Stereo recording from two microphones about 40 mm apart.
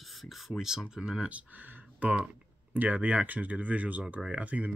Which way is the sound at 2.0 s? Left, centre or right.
Right.